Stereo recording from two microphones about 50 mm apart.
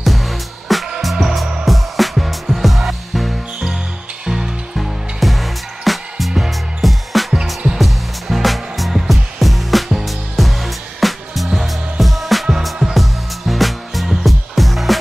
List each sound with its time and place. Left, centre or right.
0.0 s music: centre
5.2 s music: centre